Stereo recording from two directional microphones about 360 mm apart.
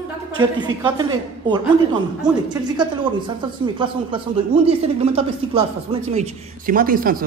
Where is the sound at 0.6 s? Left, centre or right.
Centre.